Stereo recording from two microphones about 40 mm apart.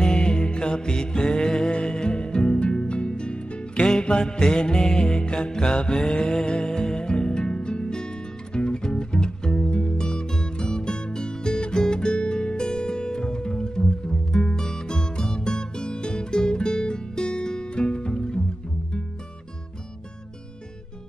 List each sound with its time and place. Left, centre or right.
0.0 s music: left
1.7 s music: left